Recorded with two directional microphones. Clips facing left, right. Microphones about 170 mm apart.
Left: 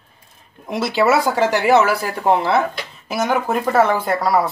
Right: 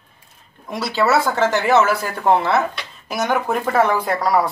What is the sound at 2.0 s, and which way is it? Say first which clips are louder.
Speech: left 2 dB; 35° left (ahead or behind).